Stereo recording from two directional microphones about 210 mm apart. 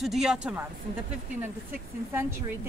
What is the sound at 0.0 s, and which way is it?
Speech, centre (ahead or behind).